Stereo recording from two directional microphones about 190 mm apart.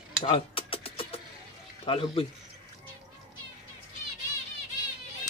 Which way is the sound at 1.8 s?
30° left (ahead or behind).